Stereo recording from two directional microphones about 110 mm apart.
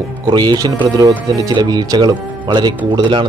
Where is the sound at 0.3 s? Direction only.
40° right (ahead or behind).